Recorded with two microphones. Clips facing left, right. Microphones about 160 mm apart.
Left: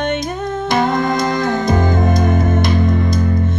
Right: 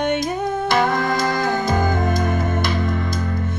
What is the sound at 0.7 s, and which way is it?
Music, 20° left (ahead or behind).